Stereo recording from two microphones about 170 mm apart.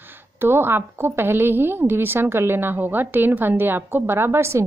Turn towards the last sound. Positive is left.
turn(degrees=-15)  # may be behind; listen again after turning